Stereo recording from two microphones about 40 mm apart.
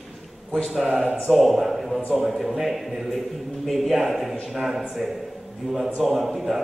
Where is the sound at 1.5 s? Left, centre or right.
Centre.